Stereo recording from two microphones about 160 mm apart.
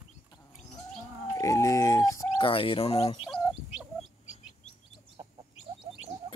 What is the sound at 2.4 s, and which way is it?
Speech, 35° left (ahead or behind).